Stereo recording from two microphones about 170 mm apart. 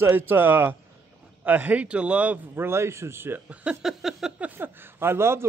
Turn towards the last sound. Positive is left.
turn(degrees=-15)  # may be behind; listen again after turning